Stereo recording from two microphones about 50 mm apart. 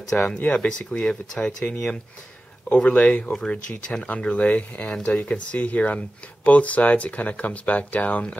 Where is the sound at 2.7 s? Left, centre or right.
Left.